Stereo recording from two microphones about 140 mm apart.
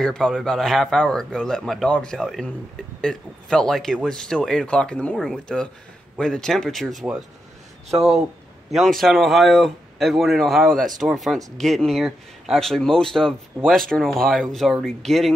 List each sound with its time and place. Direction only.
0.0 s speech: 5° left (ahead or behind)
8.7 s speech: centre (ahead or behind)